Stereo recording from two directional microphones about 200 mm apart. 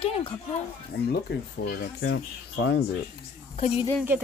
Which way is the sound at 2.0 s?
75° left (ahead or behind).